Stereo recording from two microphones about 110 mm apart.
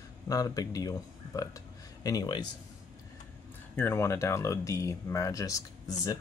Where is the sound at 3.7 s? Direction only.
25° left (ahead or behind).